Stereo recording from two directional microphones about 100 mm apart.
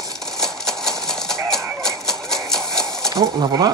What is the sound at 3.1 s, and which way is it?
Speech, 40° right (ahead or behind).